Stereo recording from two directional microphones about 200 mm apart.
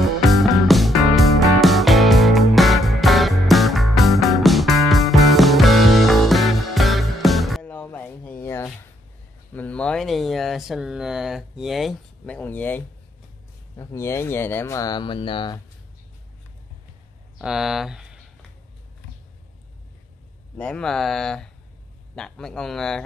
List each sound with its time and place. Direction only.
0.0 s music: centre (ahead or behind)
9.5 s speech: 5° left (ahead or behind); by 15.6 s 25° left (ahead or behind)
17.4 s speech: centre (ahead or behind)
20.5 s speech: 5° left (ahead or behind)